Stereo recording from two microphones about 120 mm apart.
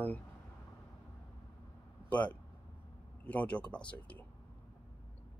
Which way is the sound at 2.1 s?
10° left (ahead or behind).